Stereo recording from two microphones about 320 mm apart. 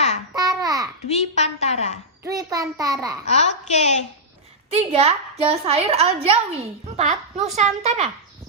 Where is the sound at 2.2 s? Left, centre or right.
Centre.